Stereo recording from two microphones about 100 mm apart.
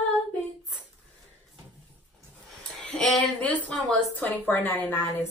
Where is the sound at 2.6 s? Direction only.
10° left (ahead or behind).